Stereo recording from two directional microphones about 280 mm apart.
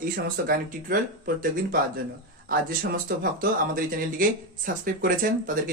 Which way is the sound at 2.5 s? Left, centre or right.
Right.